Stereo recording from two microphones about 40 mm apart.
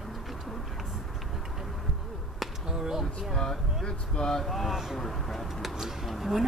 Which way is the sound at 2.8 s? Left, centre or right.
Centre.